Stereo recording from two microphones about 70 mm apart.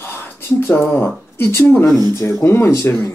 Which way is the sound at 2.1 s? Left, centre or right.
Left.